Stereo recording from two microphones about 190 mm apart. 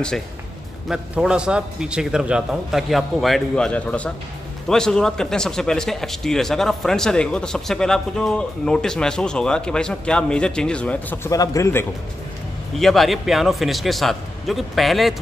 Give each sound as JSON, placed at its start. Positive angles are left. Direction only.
{"t": 0.8, "sound": "a man's voice", "side_deg": -5}
{"t": 12.7, "sound": "speech", "side_deg": 0}